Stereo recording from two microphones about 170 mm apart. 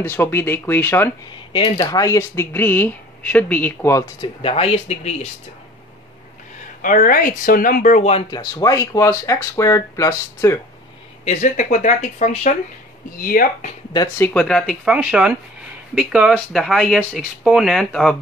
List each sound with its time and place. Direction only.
0.0 s speech: 15° left (ahead or behind)
1.5 s speech: 25° left (ahead or behind)
4.4 s speech: 35° left (ahead or behind)
6.8 s speech: 50° left (ahead or behind)
8.1 s speech: 25° left (ahead or behind)
11.2 s speech: 45° left (ahead or behind)
13.1 s speech: 55° left (ahead or behind)
13.9 s speech: 15° left (ahead or behind)
14.9 s speech: 5° right (ahead or behind)